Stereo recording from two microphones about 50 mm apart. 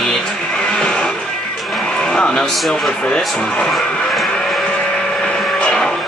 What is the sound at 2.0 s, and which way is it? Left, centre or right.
Music, centre.